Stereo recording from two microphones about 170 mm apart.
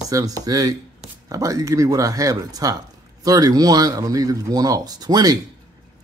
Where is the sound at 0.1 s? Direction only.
20° right (ahead or behind).